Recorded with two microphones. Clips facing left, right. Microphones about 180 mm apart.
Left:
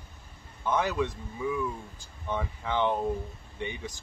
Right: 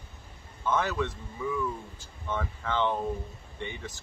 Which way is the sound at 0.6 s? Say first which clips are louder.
Left 1 dB; 15° left (ahead or behind).